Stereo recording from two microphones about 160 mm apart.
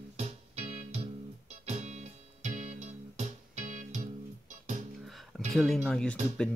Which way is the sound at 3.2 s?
45° right (ahead or behind).